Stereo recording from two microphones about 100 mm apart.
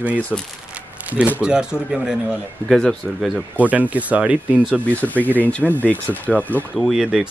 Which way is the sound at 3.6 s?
15° right (ahead or behind).